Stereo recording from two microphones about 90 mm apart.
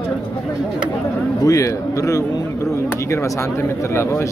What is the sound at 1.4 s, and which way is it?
Speech, 40° left (ahead or behind).